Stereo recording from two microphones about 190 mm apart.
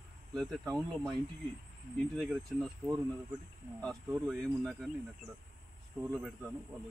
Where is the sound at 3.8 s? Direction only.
Centre (ahead or behind).